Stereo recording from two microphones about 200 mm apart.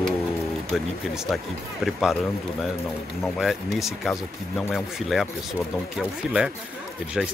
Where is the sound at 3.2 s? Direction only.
Centre (ahead or behind).